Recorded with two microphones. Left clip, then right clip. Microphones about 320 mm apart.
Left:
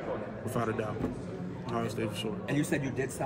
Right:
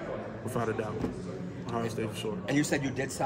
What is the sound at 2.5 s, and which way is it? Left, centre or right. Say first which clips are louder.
Speech: right 3 dB; right.